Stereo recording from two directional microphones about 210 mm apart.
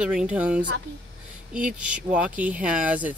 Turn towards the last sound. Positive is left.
turn(degrees=-5)  # may be behind; listen again after turning